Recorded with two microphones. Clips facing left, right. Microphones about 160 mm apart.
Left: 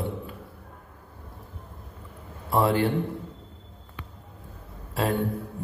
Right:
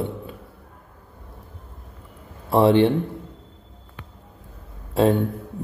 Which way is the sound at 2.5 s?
25° right (ahead or behind).